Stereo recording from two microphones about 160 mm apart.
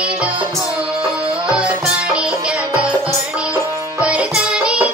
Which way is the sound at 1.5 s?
5° right (ahead or behind).